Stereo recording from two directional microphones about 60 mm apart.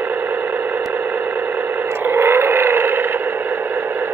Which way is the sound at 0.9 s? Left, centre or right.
Right.